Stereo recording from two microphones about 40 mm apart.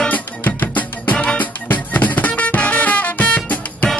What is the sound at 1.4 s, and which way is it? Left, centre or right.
Music, left.